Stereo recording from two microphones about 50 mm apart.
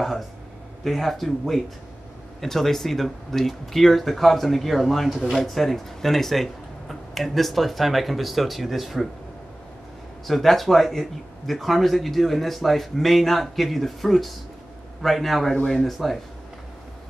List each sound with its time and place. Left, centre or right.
0.8 s speech: centre
10.2 s speech: centre
15.5 s speech: centre
15.9 s speech: centre